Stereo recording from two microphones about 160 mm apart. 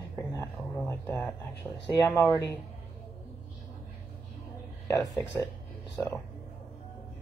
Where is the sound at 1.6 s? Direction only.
10° right (ahead or behind).